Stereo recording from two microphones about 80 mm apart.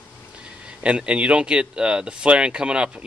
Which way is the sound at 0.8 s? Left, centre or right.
Centre.